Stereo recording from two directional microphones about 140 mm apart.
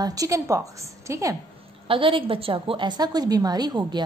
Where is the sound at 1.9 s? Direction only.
40° right (ahead or behind).